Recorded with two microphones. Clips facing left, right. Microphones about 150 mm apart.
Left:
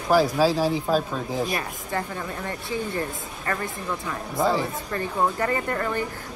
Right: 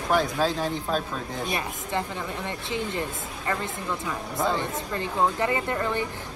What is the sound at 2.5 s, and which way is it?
Speech, 20° right (ahead or behind).